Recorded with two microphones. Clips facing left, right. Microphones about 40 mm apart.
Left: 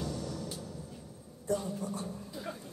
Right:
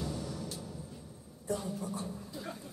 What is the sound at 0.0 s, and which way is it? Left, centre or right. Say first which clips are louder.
Music: left 1 dB; centre.